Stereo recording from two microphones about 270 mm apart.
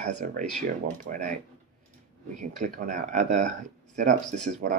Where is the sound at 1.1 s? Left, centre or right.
Right.